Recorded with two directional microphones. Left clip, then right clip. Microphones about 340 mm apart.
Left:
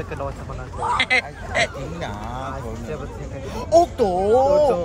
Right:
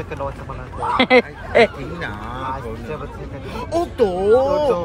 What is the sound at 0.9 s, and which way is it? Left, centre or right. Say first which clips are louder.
Speech: right 7 dB; centre.